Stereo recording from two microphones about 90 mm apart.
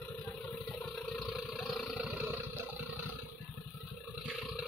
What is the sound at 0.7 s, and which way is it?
Vehicle, 10° left (ahead or behind).